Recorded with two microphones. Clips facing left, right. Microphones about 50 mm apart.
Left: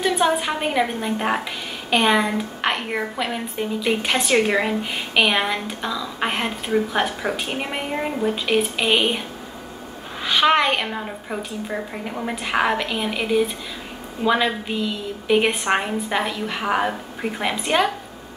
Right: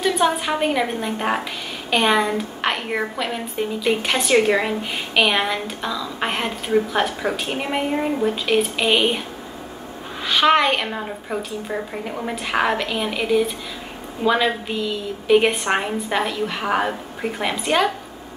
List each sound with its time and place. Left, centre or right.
0.0 s a woman's voice: centre
10.2 s a woman's voice: centre